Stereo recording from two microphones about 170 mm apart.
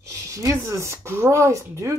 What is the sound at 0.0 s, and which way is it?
Speech, 20° right (ahead or behind).